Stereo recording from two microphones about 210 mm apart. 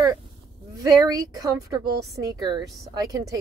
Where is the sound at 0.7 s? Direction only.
15° right (ahead or behind).